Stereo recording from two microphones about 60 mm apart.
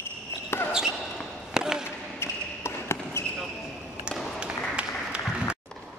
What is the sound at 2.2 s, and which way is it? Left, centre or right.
Basketball bounce, left.